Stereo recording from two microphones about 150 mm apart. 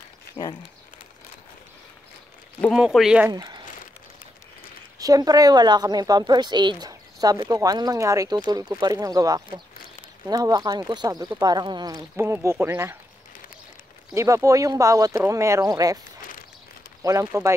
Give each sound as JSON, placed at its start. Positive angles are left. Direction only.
{"t": 2.7, "sound": "speech", "side_deg": 0}
{"t": 3.3, "sound": "speech", "side_deg": -25}
{"t": 4.9, "sound": "a woman's voice", "side_deg": -25}
{"t": 14.1, "sound": "a woman's voice", "side_deg": -20}
{"t": 16.2, "sound": "walk", "side_deg": 65}
{"t": 17.0, "sound": "a woman's voice", "side_deg": -20}